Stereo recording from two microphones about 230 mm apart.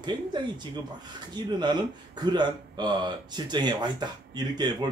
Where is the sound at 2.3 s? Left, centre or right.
Centre.